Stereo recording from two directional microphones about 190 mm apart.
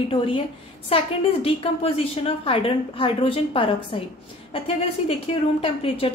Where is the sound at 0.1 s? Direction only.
30° left (ahead or behind).